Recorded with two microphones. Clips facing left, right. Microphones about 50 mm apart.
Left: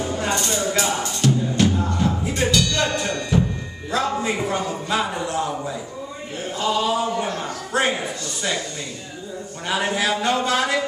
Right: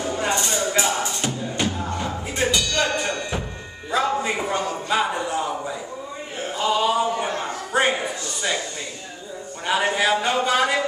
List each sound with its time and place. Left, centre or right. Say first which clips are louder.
0.1 s music: right 3 dB; centre
3.1 s music: left 5 dB; centre
3.9 s a man's voice: even; centre
6.5 s a sound: right 1 dB; centre
7.2 s a sound: even; centre
7.7 s speech: right 1 dB; centre
9.7 s speech: right 2 dB; centre